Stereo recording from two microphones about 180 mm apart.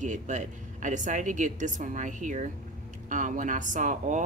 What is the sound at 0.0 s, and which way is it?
Speech, 45° right (ahead or behind).